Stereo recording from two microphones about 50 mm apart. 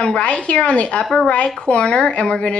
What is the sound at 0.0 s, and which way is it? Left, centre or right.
Speech, left.